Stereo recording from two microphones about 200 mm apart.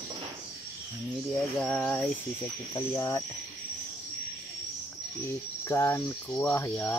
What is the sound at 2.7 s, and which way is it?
Cricket, 15° left (ahead or behind).